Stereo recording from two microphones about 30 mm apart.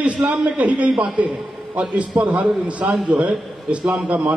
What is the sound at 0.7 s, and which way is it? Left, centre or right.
Speech, right.